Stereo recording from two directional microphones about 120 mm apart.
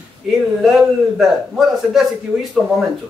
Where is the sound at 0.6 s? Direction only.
Centre (ahead or behind).